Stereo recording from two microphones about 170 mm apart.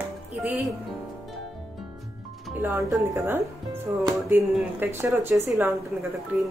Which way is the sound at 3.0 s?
15° right (ahead or behind).